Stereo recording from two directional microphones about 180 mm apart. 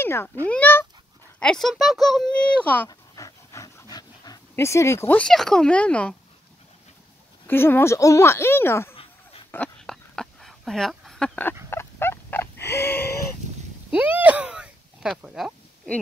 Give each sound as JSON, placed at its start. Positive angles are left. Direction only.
{"t": 0.0, "sound": "a child's voice", "side_deg": 10}
{"t": 2.9, "sound": "dog", "side_deg": 20}
{"t": 3.9, "sound": "speech", "side_deg": 20}
{"t": 7.4, "sound": "speech", "side_deg": 10}
{"t": 9.5, "sound": "a sound", "side_deg": 5}
{"t": 11.7, "sound": "fowl", "side_deg": 15}
{"t": 13.8, "sound": "a sound", "side_deg": -5}